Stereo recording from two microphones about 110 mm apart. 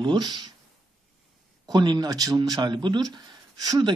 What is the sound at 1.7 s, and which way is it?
Speech, 40° right (ahead or behind).